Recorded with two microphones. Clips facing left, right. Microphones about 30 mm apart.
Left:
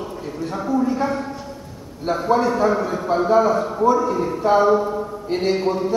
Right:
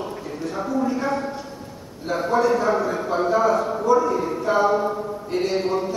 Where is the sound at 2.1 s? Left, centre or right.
Left.